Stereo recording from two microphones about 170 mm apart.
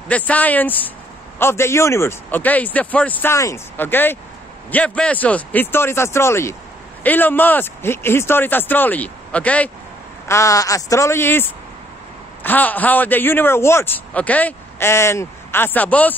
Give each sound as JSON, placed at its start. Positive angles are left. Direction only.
{"t": 0.1, "sound": "speech", "side_deg": 10}
{"t": 12.4, "sound": "speech", "side_deg": 10}